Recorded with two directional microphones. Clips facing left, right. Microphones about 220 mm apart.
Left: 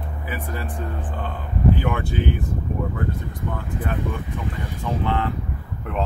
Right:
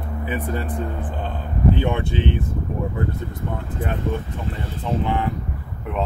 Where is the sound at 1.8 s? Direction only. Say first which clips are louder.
Right 2 dB; 25° right (ahead or behind).